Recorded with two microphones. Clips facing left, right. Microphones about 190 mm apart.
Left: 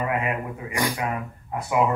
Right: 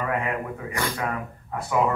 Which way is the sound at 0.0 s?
20° left (ahead or behind).